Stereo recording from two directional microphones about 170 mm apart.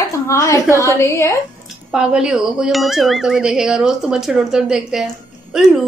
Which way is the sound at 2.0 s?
5° right (ahead or behind).